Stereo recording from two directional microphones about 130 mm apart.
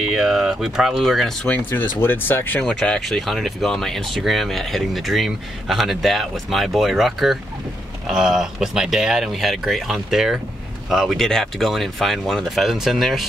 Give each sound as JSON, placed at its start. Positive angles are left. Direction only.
{"t": 0.0, "sound": "speech", "side_deg": -5}
{"t": 2.6, "sound": "speech", "side_deg": 0}